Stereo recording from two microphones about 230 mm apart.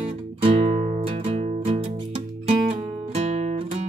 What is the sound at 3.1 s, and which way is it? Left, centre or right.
Guitar, right.